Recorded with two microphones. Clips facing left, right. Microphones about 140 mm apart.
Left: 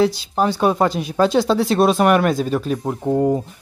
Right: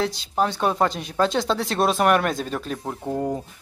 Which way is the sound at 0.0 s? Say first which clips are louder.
Left 6 dB; 5° left (ahead or behind).